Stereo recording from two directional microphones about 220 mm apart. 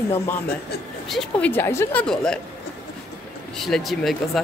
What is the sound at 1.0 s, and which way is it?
Speech, centre (ahead or behind).